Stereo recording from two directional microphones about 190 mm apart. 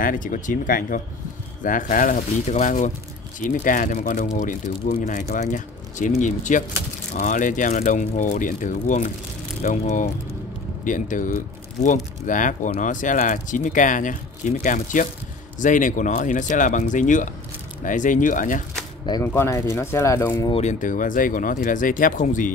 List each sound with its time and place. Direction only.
0.0 s speech: 45° left (ahead or behind)
19.0 s speech: 15° left (ahead or behind)
20.5 s speech: 40° left (ahead or behind)